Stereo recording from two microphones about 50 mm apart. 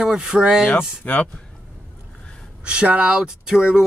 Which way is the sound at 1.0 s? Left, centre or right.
Left.